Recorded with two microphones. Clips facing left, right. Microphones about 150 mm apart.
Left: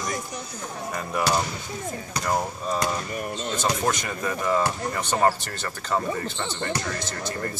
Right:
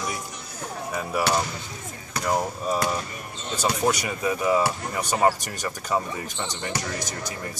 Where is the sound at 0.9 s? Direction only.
5° right (ahead or behind).